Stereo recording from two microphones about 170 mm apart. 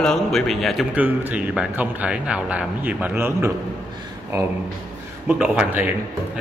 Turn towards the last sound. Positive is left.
turn(degrees=-10)  # may be behind; listen again after turning